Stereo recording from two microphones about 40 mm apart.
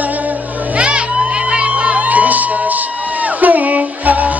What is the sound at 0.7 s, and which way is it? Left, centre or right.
Crowd, right.